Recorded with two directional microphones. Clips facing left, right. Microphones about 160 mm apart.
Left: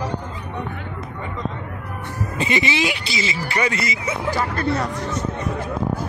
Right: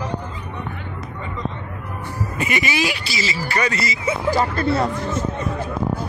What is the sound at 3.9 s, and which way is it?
Speech, 30° right (ahead or behind).